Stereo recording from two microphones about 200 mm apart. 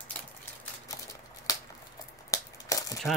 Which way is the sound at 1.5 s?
15° left (ahead or behind).